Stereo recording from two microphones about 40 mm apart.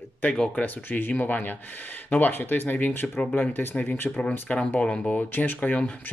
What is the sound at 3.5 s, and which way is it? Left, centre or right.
Speech, left.